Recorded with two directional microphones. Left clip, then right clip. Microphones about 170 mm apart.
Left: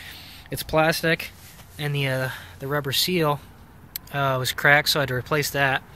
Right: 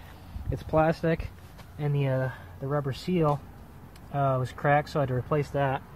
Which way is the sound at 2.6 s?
20° left (ahead or behind).